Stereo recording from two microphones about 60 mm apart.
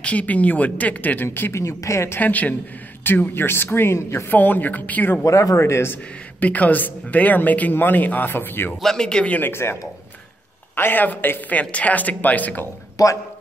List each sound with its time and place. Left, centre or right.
0.0 s speech: left
1.5 s speech: left
2.1 s speech: left
4.3 s speech: left
5.2 s speech: left
5.7 s speech: left
6.4 s speech: left
8.8 s speech: centre
9.5 s speech: left
10.8 s speech: left
12.9 s a man's voice: left